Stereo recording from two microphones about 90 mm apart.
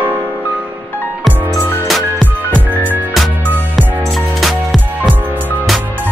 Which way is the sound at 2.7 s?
20° right (ahead or behind).